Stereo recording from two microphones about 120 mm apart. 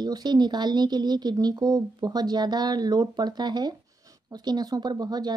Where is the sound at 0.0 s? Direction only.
35° right (ahead or behind).